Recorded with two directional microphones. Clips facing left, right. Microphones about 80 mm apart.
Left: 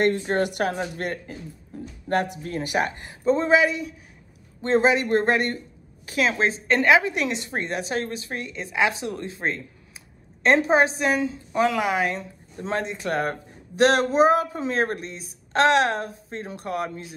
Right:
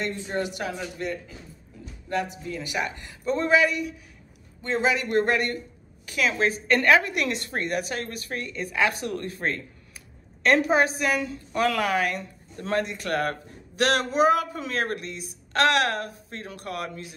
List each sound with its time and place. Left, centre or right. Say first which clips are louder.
0.0 s a woman's voice: left 7 dB; left